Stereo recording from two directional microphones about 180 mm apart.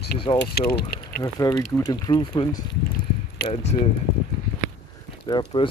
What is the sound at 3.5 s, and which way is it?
Speech, 35° left (ahead or behind).